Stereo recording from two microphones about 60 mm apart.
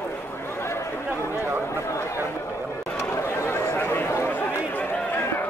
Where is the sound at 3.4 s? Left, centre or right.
Left.